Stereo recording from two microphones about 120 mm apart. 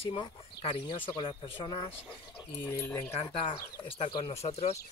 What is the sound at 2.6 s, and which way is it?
Speech, 20° left (ahead or behind).